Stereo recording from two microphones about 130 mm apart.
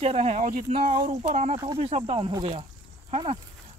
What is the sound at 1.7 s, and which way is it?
Speech, 50° right (ahead or behind).